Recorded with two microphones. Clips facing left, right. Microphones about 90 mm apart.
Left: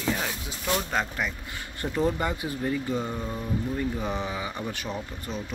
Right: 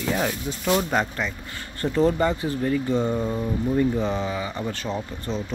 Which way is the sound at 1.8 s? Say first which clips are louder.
Right 6 dB; 10° left (ahead or behind).